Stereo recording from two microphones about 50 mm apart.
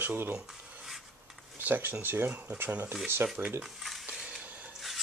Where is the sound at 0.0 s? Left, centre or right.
Right.